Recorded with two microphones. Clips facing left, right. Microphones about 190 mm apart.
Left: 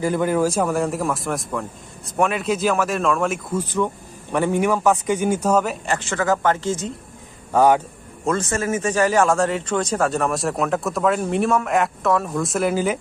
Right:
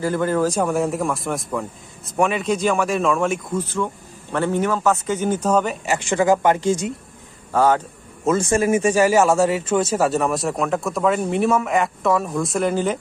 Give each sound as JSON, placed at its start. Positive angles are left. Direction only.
{"t": 0.0, "sound": "speech", "side_deg": 15}
{"t": 3.6, "sound": "a man's voice", "side_deg": 15}
{"t": 5.9, "sound": "speech", "side_deg": -15}
{"t": 7.5, "sound": "a man's voice", "side_deg": 15}
{"t": 8.3, "sound": "speech", "side_deg": -15}